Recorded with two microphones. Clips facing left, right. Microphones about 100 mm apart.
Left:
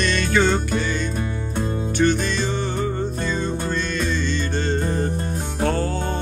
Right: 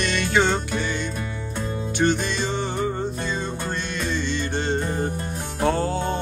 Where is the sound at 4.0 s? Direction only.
15° right (ahead or behind).